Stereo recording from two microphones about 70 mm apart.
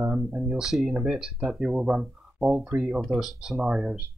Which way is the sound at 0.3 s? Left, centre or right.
Centre.